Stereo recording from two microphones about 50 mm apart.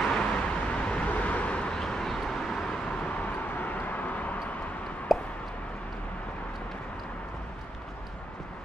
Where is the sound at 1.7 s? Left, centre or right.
Centre.